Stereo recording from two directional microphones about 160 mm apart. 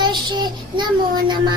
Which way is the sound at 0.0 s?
30° right (ahead or behind).